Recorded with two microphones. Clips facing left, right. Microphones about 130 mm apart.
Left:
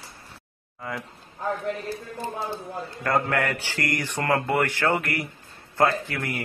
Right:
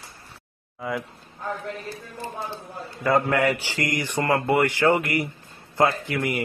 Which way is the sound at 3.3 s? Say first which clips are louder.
Right 4 dB; 15° right (ahead or behind).